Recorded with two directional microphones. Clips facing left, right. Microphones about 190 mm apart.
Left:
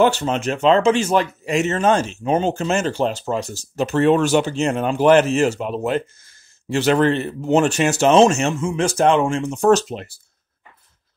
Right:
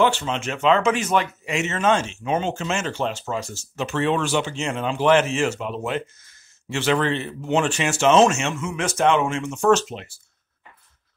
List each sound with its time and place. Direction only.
0.0 s speech: 40° left (ahead or behind)